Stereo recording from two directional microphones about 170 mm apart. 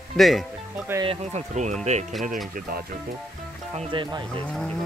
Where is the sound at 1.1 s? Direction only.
40° right (ahead or behind).